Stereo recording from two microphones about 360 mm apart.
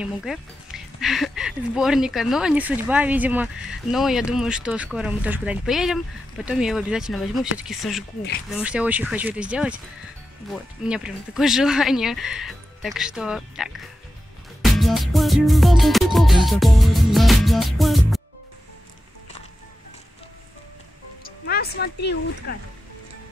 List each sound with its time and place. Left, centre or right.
0.0 s speech: centre
21.2 s music: left